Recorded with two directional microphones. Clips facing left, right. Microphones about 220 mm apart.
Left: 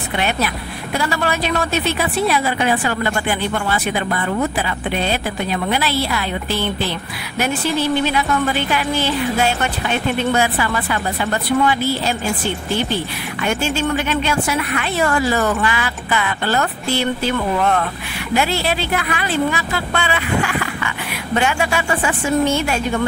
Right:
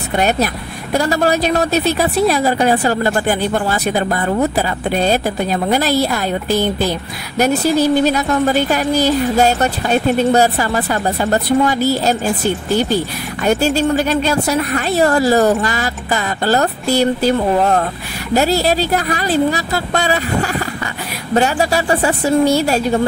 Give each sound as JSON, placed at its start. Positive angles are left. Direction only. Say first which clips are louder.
{"t": 0.1, "sound": "speech", "louder": "right 5 dB", "side_deg": -40}